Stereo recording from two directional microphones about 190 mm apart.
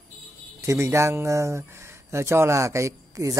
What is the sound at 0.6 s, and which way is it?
Speech, 15° right (ahead or behind).